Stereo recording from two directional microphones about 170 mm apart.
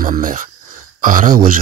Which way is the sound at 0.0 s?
55° right (ahead or behind).